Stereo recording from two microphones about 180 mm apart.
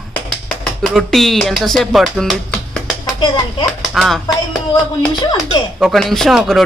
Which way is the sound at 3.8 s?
Centre (ahead or behind).